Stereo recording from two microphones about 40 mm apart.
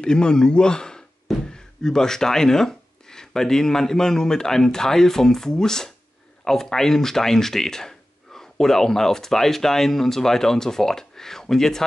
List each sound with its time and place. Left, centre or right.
0.0 s a man's voice: left